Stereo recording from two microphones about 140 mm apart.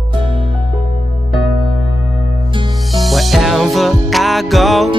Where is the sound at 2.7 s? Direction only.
Centre (ahead or behind).